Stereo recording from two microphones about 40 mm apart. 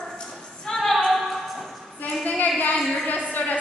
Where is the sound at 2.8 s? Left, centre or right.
Centre.